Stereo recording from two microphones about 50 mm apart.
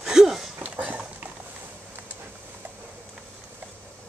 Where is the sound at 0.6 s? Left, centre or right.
Right.